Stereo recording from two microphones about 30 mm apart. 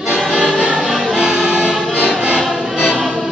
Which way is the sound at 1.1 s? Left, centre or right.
Right.